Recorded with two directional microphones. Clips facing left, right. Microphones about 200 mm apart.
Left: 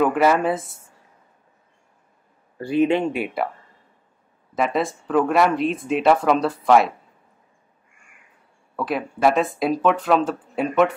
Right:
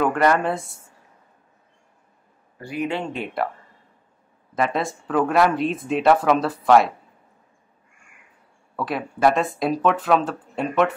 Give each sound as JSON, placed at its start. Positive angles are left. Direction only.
{"t": 0.0, "sound": "speech", "side_deg": 5}
{"t": 2.6, "sound": "speech", "side_deg": 25}
{"t": 4.6, "sound": "speech", "side_deg": 0}
{"t": 8.7, "sound": "speech", "side_deg": 0}